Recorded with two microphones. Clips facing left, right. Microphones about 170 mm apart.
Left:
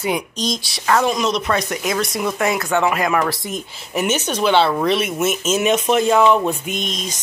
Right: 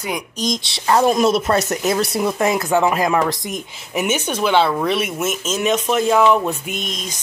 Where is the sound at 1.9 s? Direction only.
30° right (ahead or behind).